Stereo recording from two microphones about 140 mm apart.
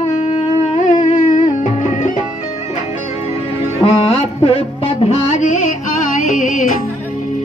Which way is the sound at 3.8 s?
40° left (ahead or behind).